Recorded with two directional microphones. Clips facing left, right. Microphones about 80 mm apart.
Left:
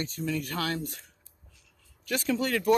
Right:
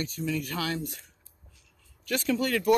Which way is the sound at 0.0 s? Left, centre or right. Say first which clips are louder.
Right 1 dB; left.